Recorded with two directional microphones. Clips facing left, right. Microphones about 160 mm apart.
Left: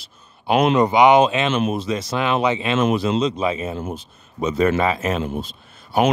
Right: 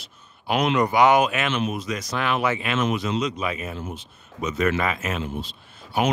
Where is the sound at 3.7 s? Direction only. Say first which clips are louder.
Left 5 dB; 45° left (ahead or behind).